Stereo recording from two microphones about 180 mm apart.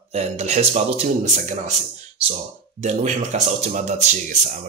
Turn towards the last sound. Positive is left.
turn(degrees=-40)  # may be behind; listen again after turning